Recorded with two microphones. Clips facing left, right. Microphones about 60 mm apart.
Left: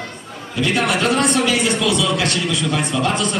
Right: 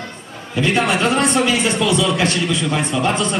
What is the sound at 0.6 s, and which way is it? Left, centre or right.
A man's voice, right.